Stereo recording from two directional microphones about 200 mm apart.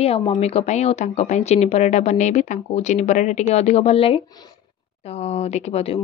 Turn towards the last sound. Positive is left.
turn(degrees=30)  # may be behind; listen again after turning